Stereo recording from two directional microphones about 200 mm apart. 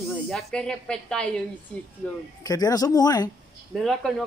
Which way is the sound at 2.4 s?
20° left (ahead or behind).